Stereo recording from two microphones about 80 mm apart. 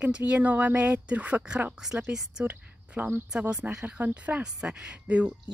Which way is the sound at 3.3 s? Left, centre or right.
Centre.